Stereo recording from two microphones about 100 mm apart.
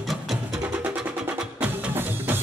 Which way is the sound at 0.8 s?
15° right (ahead or behind).